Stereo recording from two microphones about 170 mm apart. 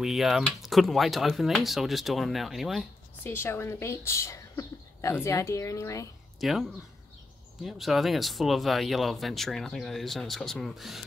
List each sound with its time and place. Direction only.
0.0 s speech: centre (ahead or behind)
3.3 s a woman's voice: 15° left (ahead or behind)
6.4 s speech: centre (ahead or behind)